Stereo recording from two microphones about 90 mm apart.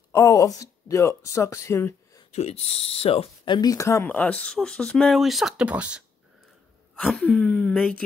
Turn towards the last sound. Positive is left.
turn(degrees=10)  # may be behind; listen again after turning